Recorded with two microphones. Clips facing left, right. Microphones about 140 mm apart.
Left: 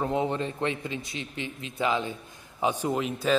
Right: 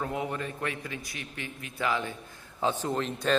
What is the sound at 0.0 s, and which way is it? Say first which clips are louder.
A man's voice: left 5 dB; 25° left (ahead or behind).